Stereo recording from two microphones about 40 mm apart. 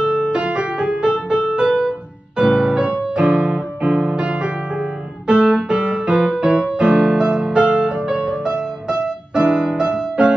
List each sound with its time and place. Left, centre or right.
0.0 s music: right